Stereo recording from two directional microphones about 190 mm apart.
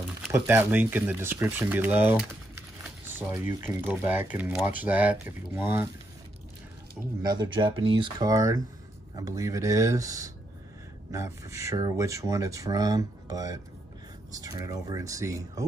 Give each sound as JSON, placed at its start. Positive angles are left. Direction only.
{"t": 0.3, "sound": "speech", "side_deg": -10}
{"t": 7.2, "sound": "speech", "side_deg": -20}